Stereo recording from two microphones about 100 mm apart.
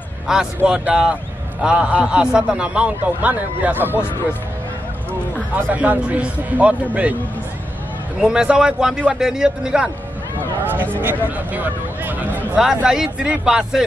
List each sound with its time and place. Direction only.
0.3 s a man's voice: 5° right (ahead or behind); by 4.0 s 20° right (ahead or behind)
5.6 s a man's voice: 15° right (ahead or behind)
8.2 s a man's voice: 10° right (ahead or behind)
11.5 s a man's voice: 15° right (ahead or behind)